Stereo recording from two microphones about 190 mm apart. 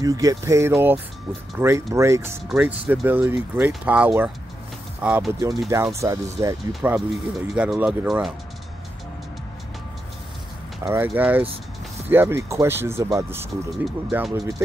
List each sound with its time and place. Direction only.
0.0 s speech: 20° right (ahead or behind)
6.7 s speech: 5° right (ahead or behind)
10.8 s speech: 10° right (ahead or behind)
13.8 s speech: centre (ahead or behind)